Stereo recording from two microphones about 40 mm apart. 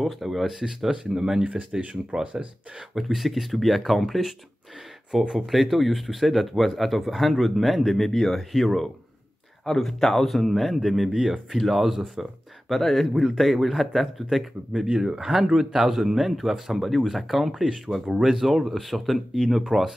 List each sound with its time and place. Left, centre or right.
0.0 s speech: centre
2.9 s speech: centre
11.5 s speech: centre